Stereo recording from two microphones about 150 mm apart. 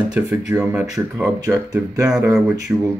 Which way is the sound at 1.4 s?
20° right (ahead or behind).